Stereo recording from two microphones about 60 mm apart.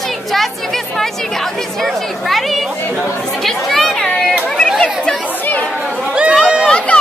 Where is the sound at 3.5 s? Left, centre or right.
Centre.